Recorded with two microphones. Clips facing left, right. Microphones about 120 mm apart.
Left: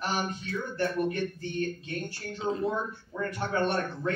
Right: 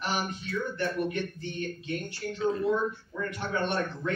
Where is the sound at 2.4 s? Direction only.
25° left (ahead or behind).